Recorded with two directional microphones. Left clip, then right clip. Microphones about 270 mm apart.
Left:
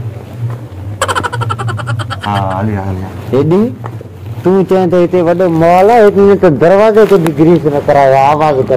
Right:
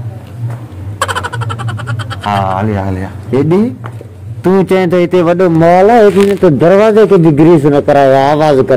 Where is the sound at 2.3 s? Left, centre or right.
Right.